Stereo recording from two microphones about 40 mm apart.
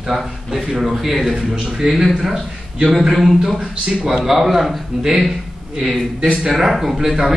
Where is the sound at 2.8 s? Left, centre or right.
Centre.